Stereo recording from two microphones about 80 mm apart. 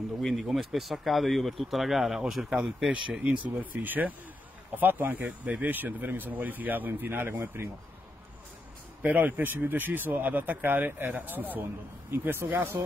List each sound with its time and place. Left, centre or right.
0.2 s speech: centre
3.1 s speech: centre; by 7.7 s right
9.0 s speech: right